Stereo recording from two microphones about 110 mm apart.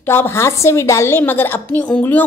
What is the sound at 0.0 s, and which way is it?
A woman's voice, 20° left (ahead or behind).